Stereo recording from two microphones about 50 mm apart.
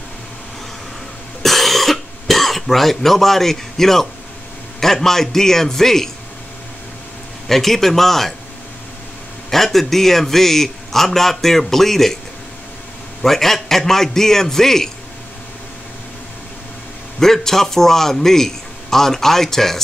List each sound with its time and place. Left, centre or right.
1.4 s cough: centre
4.7 s a man's voice: centre
7.4 s a man's voice: centre
9.5 s a man's voice: centre
13.2 s a man's voice: centre
17.2 s a man's voice: centre